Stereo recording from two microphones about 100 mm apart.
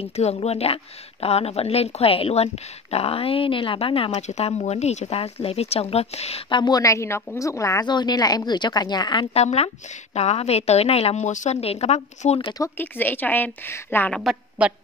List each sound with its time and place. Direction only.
0.0 s a woman's voice: 90° left
6.5 s speech: 45° left (ahead or behind)
6.8 s a woman's voice: 30° left (ahead or behind)
7.8 s speech: 45° left (ahead or behind)
9.3 s a woman's voice: 90° left
12.7 s a woman's voice: 20° left (ahead or behind)
14.6 s a woman's voice: 15° right (ahead or behind)